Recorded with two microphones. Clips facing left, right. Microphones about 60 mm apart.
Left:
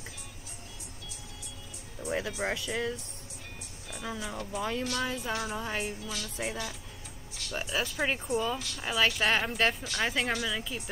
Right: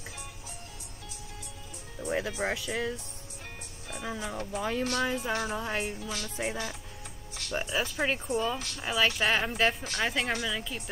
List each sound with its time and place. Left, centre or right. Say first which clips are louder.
2.0 s speech: right 2 dB; centre
4.0 s speech: right 1 dB; centre
5.3 s a woman's voice: right 2 dB; right
5.6 s speech: right 1 dB; centre
5.9 s a woman's voice: right 2 dB; right
6.3 s speech: right 2 dB; centre
7.5 s speech: right 2 dB; centre